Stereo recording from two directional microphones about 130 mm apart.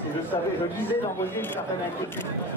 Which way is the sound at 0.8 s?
15° left (ahead or behind).